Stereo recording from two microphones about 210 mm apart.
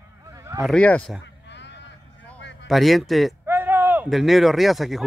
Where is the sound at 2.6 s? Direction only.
Centre (ahead or behind).